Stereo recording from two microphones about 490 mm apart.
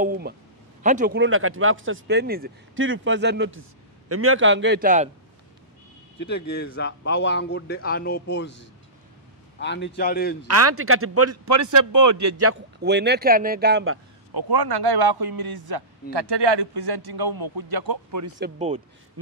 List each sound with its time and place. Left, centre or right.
0.0 s a man's voice: centre
6.1 s a man's voice: left
10.4 s a man's voice: right
14.3 s a man's voice: right